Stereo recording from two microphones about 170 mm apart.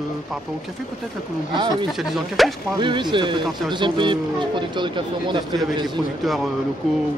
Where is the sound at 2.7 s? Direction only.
25° right (ahead or behind).